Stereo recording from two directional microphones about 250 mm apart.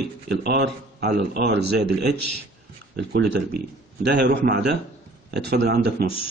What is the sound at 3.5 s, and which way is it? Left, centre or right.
Speech, right.